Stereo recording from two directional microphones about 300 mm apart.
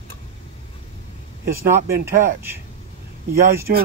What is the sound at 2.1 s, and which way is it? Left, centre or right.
Speech, right.